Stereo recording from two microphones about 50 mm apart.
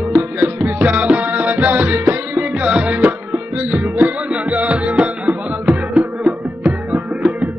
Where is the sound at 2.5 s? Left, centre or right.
Right.